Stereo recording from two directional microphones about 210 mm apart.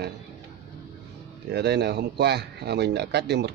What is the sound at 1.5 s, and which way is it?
Speech, 55° right (ahead or behind).